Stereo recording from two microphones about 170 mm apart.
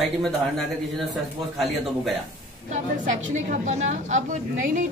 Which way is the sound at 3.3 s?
45° right (ahead or behind).